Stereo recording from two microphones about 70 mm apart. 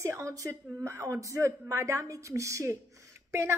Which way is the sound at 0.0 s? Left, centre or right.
Right.